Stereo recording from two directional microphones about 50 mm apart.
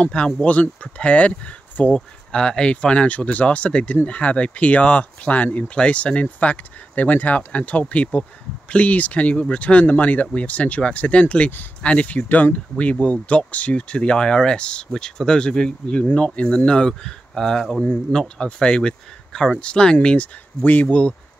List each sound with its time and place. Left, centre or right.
0.0 s speech: left
2.0 s speech: centre
17.4 s speech: centre
20.6 s speech: left